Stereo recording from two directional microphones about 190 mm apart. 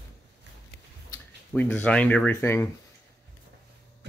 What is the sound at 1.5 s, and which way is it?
Speech, 10° left (ahead or behind).